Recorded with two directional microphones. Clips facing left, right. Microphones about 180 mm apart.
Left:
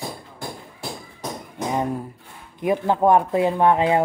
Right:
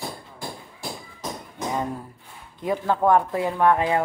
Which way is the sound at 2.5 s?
15° left (ahead or behind).